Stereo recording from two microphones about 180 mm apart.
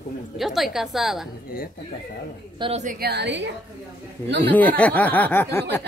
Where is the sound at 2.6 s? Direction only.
40° right (ahead or behind).